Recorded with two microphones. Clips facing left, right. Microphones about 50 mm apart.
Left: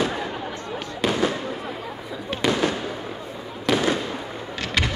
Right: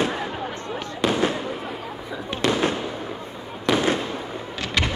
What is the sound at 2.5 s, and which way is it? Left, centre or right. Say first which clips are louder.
Fireworks: even; right.